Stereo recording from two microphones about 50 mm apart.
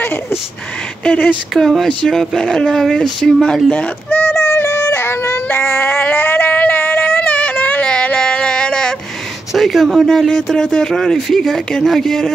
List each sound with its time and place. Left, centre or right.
1.0 s speech: left
1.5 s speech: centre
3.7 s speech: left
4.2 s music: left
4.6 s a sound: left; by 8.9 s centre
9.5 s speech: centre